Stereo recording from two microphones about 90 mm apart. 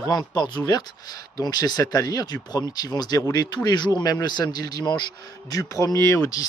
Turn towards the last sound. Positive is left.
turn(degrees=35)  # may be behind; listen again after turning